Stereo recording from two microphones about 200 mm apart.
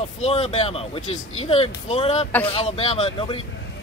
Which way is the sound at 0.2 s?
30° left (ahead or behind).